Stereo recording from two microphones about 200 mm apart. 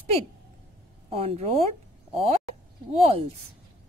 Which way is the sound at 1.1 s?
30° right (ahead or behind).